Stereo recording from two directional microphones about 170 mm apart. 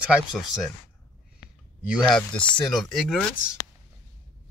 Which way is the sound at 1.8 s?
Centre (ahead or behind).